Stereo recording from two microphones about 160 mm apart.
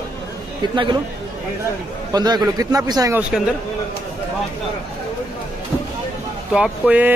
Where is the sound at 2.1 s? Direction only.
25° right (ahead or behind).